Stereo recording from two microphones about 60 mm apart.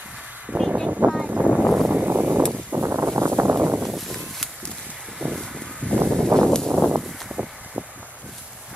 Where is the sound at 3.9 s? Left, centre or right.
Centre.